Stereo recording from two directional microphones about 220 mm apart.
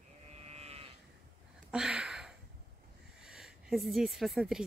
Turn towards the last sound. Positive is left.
turn(degrees=0)  # may be behind; listen again after turning